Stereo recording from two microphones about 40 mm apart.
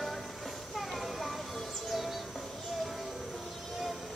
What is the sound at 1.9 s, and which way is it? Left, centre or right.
Music, centre.